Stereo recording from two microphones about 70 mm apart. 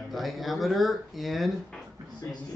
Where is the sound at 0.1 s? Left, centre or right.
Centre.